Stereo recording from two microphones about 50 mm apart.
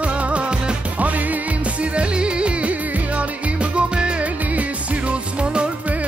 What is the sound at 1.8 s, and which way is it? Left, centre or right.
Music, right.